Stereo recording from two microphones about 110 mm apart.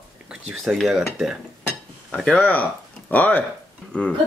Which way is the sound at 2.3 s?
15° left (ahead or behind).